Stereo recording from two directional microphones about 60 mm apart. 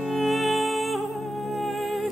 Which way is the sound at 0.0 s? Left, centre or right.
Centre.